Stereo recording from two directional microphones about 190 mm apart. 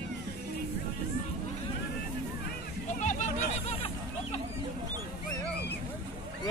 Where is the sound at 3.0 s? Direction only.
40° left (ahead or behind).